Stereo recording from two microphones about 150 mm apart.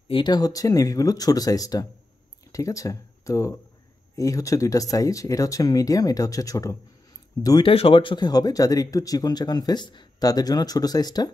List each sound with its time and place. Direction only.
0.1 s a man's voice: 30° left (ahead or behind)